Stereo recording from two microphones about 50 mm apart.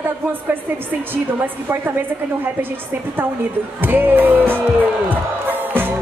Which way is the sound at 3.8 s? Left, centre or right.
Right.